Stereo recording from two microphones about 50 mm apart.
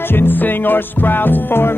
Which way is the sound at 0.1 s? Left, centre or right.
Left.